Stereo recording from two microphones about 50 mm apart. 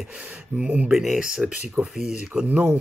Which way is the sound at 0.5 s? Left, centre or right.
Right.